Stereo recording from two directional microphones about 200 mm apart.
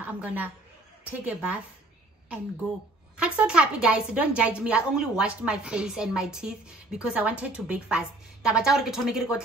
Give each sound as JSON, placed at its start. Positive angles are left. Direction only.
{"t": 0.0, "sound": "a woman's voice", "side_deg": -10}
{"t": 3.2, "sound": "a woman's voice", "side_deg": -5}